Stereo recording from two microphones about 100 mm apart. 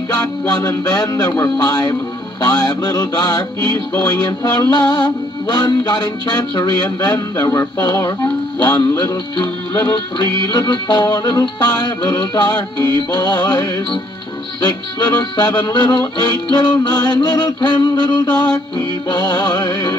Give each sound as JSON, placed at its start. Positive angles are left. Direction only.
{"t": 0.1, "sound": "music", "side_deg": 40}
{"t": 8.5, "sound": "music", "side_deg": 45}
{"t": 10.1, "sound": "music", "side_deg": 40}